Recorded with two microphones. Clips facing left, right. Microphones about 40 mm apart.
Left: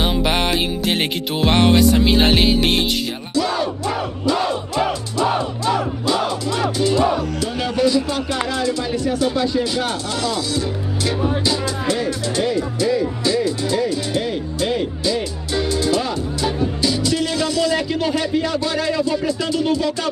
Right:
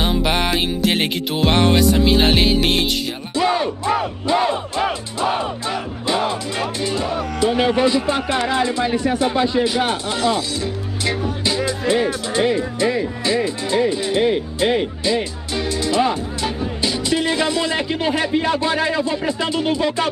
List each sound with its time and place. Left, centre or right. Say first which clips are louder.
0.0 s music: even; centre
3.3 s music: right 2 dB; right
7.2 s speech: right 4 dB; right